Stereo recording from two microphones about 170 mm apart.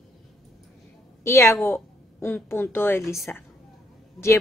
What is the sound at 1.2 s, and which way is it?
A woman's voice, 15° left (ahead or behind).